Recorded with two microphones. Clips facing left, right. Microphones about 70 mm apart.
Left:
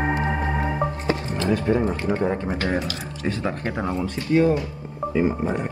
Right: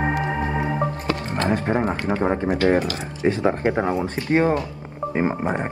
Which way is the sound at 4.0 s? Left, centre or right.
Right.